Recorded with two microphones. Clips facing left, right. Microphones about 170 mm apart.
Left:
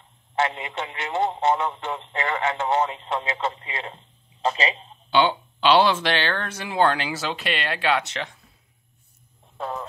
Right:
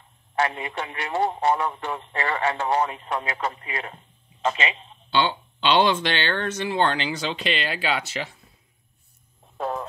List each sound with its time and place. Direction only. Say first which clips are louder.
0.4 s a man's voice: even; 25° left (ahead or behind)
5.1 s speech: left 3 dB; 10° left (ahead or behind)